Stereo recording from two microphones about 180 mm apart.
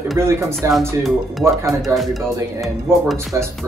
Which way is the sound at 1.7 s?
Centre (ahead or behind).